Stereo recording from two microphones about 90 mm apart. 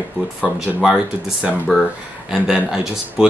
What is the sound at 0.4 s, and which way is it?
Speech, 10° right (ahead or behind).